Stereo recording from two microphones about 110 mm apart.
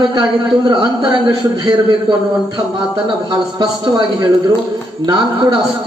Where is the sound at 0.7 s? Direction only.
35° right (ahead or behind).